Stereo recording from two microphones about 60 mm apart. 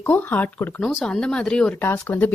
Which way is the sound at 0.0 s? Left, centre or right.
Left.